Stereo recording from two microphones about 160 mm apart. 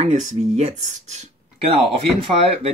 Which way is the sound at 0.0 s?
45° right (ahead or behind).